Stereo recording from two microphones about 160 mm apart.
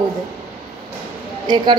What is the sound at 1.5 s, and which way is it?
Speech, 25° right (ahead or behind).